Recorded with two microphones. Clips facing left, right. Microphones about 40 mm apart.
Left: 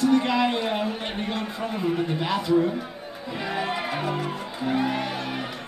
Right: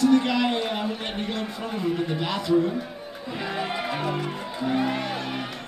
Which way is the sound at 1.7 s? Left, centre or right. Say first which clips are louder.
Even; left.